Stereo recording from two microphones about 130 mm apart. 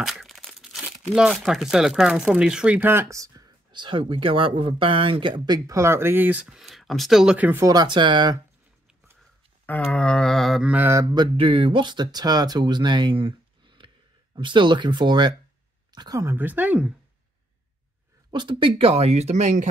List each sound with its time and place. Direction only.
0.0 s speech: centre (ahead or behind)
6.4 s speech: centre (ahead or behind)
7.6 s speech: 30° right (ahead or behind)
9.7 s speech: 5° left (ahead or behind)
10.7 s speech: 15° right (ahead or behind)
11.1 s speech: 45° right (ahead or behind); by 16.3 s 25° right (ahead or behind)
16.3 s speech: 15° right (ahead or behind)
18.3 s speech: 35° right (ahead or behind); by 19.7 s 70° right (ahead or behind)